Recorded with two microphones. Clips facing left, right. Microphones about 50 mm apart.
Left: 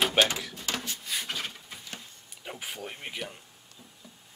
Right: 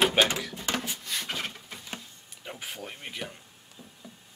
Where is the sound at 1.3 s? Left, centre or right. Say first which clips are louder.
Right 1 dB; centre.